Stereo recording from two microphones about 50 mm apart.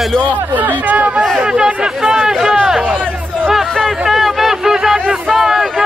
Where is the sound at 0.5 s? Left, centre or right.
Right.